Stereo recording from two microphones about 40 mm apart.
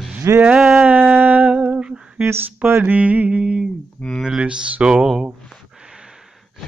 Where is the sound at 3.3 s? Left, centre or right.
Right.